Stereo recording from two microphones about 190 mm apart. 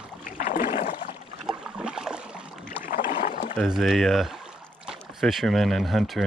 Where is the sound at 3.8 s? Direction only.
Centre (ahead or behind).